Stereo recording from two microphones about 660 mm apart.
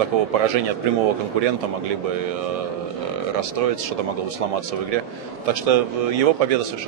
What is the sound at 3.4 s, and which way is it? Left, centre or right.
A man's voice, right.